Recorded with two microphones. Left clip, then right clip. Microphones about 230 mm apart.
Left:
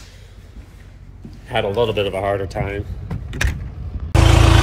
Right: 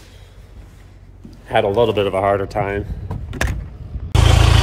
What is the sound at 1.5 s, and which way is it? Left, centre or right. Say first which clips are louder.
Speech: right 3 dB; right.